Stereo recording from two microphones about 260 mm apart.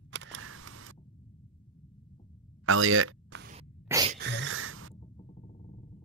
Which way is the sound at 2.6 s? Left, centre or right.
Right.